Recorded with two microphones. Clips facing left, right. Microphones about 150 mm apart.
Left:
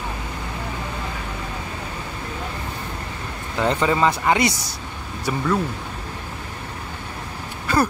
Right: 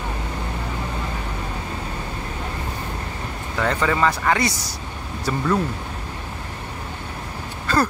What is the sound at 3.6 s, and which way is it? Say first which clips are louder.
Speech: left 1 dB; 20° left (ahead or behind).